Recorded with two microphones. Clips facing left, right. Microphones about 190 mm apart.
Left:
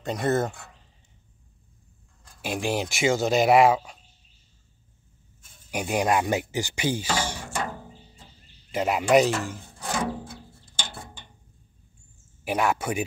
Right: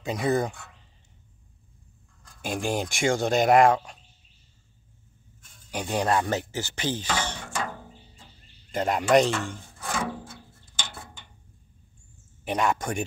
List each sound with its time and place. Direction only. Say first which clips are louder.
0.0 s speech: even; centre (ahead or behind)
2.4 s speech: left 1 dB; 5° left (ahead or behind)
5.7 s speech: left 1 dB; 10° left (ahead or behind)
9.8 s a sound: left 2 dB; 20° left (ahead or behind)
12.4 s speech: left 1 dB; 5° left (ahead or behind)